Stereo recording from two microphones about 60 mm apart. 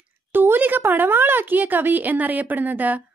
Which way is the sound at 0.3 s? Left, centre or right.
Right.